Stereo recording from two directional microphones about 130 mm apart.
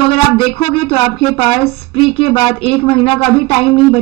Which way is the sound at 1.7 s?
45° left (ahead or behind).